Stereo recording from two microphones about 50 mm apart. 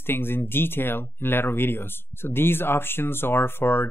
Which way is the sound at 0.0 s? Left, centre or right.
Left.